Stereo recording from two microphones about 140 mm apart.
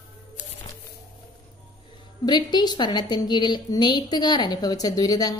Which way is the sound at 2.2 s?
30° left (ahead or behind).